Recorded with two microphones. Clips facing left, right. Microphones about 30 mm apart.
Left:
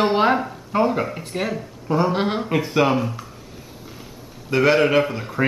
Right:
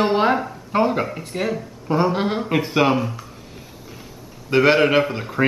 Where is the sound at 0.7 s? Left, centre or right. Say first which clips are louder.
Right 1 dB; centre.